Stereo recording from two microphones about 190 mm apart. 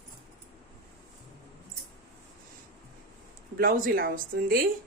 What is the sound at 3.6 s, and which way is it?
Speech, 50° right (ahead or behind).